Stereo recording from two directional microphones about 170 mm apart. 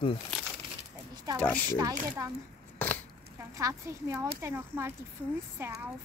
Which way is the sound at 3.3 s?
20° right (ahead or behind).